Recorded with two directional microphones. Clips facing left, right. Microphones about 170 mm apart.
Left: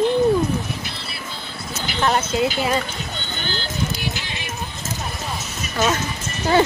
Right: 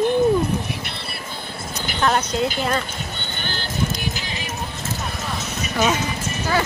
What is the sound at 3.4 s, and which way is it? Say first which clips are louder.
Music: left 2 dB; 55° right (ahead or behind).